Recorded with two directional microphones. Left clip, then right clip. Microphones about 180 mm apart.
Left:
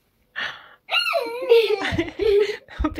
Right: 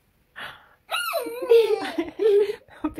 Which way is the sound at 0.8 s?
20° right (ahead or behind).